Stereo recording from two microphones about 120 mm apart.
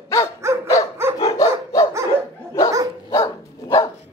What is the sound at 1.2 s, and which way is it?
Dog, 30° left (ahead or behind).